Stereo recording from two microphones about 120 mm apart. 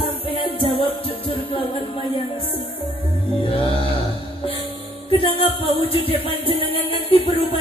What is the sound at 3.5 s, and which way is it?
Music, 50° left (ahead or behind).